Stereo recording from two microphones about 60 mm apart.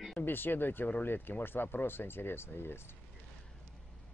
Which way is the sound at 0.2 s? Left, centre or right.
Left.